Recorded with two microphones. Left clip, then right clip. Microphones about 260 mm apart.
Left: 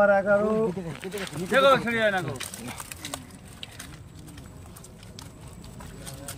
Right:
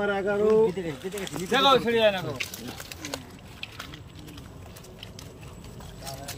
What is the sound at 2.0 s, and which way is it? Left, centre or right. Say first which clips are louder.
Speech: right 2 dB; centre.